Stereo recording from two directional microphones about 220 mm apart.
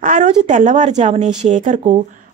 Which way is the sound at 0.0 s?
35° right (ahead or behind).